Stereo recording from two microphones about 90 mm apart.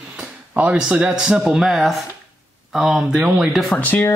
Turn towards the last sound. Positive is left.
turn(degrees=20)  # may be behind; listen again after turning